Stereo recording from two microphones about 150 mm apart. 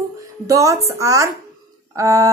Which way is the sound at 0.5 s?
20° right (ahead or behind).